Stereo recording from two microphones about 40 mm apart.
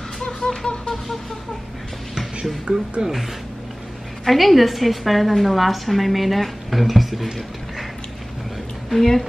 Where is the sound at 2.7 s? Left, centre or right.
Right.